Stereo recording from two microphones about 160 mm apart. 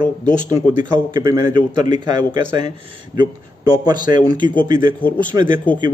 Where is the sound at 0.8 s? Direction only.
30° right (ahead or behind).